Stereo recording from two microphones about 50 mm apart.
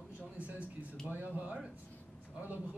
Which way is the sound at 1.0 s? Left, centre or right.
Right.